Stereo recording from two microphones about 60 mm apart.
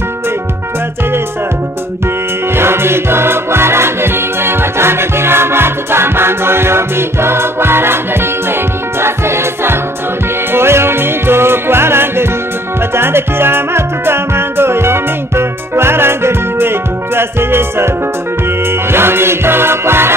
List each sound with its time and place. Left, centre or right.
2.5 s music: right